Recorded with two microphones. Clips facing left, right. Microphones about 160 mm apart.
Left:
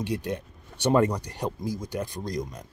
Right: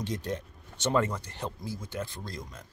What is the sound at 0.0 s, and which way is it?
Speech, 10° left (ahead or behind).